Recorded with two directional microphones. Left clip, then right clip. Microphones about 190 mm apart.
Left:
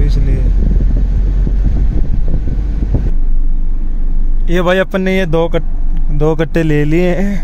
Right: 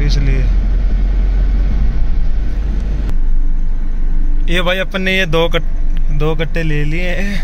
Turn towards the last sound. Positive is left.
turn(degrees=30)  # may be behind; listen again after turning